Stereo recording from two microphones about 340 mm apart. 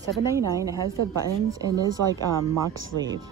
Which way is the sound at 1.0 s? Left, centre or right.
Right.